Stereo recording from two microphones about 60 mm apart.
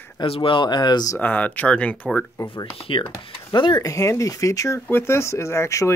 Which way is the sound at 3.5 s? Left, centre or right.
Left.